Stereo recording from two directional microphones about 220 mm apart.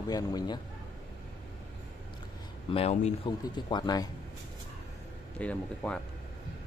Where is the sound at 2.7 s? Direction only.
30° left (ahead or behind).